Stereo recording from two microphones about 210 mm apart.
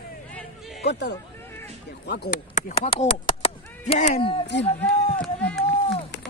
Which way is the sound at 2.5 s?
30° left (ahead or behind).